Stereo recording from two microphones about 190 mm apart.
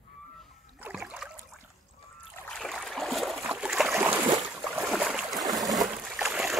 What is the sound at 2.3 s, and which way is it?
Stream, 5° left (ahead or behind).